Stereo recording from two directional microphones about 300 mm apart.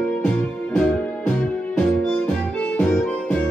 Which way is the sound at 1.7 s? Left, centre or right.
Centre.